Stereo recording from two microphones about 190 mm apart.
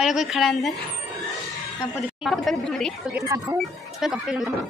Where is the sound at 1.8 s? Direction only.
10° left (ahead or behind).